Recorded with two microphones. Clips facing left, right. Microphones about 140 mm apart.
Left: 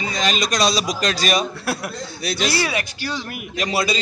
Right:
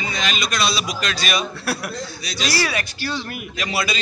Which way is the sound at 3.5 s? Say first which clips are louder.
Left 4 dB; 40° left (ahead or behind).